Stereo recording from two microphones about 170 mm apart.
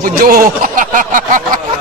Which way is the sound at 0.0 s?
55° right (ahead or behind).